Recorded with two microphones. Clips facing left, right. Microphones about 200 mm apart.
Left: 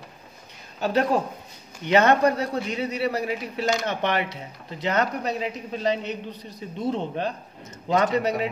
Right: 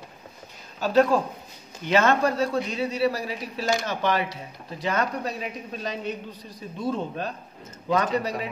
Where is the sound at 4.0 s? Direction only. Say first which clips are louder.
Even; 65° left (ahead or behind).